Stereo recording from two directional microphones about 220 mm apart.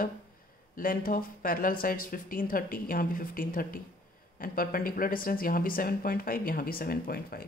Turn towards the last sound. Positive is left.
turn(degrees=40)  # may be behind; listen again after turning